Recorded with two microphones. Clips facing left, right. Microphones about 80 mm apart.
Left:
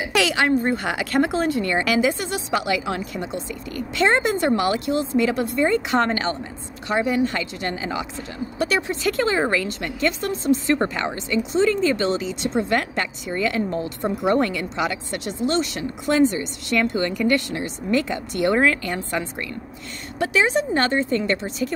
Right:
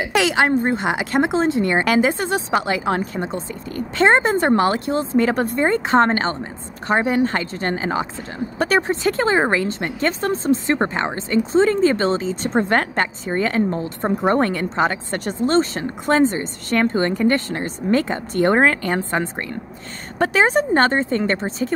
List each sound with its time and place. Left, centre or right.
0.1 s a woman's voice: right
9.0 s a woman's voice: right